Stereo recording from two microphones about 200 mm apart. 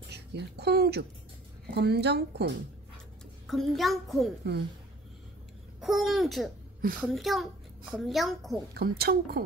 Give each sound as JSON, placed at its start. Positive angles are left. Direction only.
{"t": 0.1, "sound": "a woman's voice", "side_deg": -55}
{"t": 3.4, "sound": "a child's voice", "side_deg": 0}
{"t": 5.8, "sound": "a child's voice", "side_deg": 0}
{"t": 8.7, "sound": "speech", "side_deg": -50}